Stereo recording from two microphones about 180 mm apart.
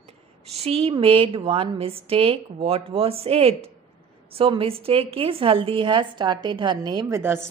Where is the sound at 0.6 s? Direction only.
35° right (ahead or behind).